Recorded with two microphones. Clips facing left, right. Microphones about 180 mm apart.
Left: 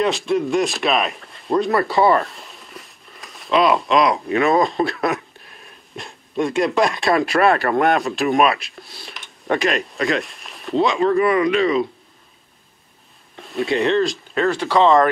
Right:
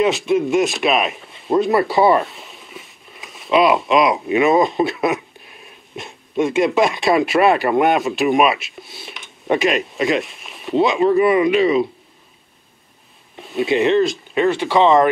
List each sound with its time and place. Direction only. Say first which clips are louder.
0.0 s speech: right 3 dB; centre (ahead or behind)
11.0 s speech: right 3 dB; 15° right (ahead or behind)
11.5 s speech: right 2 dB; 5° right (ahead or behind)
13.4 s speech: right 3 dB; centre (ahead or behind)